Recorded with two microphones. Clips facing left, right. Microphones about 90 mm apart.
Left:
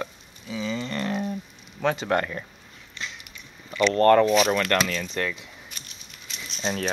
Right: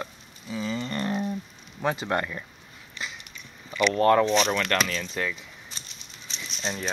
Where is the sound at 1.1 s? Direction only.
Centre (ahead or behind).